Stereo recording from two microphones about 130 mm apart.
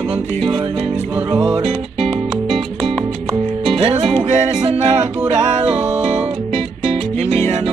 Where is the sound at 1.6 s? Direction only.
55° right (ahead or behind).